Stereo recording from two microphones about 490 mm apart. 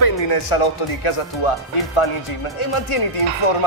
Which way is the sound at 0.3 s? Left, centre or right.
Left.